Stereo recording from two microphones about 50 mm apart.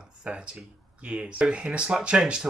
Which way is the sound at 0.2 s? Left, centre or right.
Right.